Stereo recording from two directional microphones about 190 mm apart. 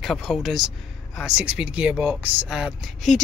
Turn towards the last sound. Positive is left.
turn(degrees=0)  # may be behind; listen again after turning